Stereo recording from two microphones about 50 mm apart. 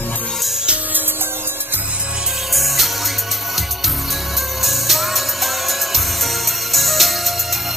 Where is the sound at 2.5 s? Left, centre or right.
Centre.